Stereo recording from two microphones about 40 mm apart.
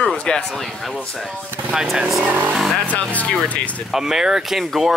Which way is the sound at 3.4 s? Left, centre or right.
Left.